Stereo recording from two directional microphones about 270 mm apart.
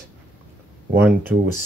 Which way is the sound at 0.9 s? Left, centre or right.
Centre.